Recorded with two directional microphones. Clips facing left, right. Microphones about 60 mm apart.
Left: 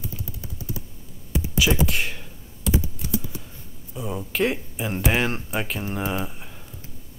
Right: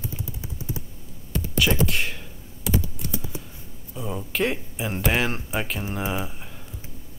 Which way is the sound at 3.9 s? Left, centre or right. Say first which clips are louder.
Left 1 dB; centre.